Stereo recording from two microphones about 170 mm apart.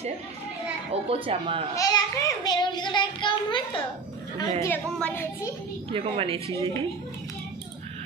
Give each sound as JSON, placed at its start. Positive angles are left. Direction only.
{"t": 1.0, "sound": "a woman's voice", "side_deg": -35}
{"t": 1.8, "sound": "a child's voice", "side_deg": 20}
{"t": 4.6, "sound": "speech", "side_deg": 10}
{"t": 5.9, "sound": "a woman's voice", "side_deg": -35}
{"t": 6.5, "sound": "speech", "side_deg": 15}